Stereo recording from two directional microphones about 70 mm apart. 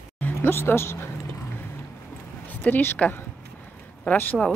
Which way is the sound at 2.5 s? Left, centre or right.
Left.